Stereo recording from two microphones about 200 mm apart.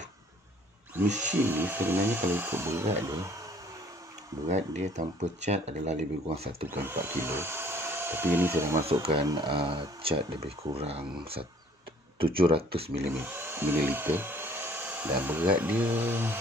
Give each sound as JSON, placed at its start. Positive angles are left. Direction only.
{"t": 1.0, "sound": "speech", "side_deg": -35}
{"t": 1.3, "sound": "speech", "side_deg": -10}
{"t": 4.5, "sound": "speech", "side_deg": -35}
{"t": 6.7, "sound": "speech", "side_deg": -10}
{"t": 9.0, "sound": "speech", "side_deg": -25}
{"t": 13.1, "sound": "speech", "side_deg": -10}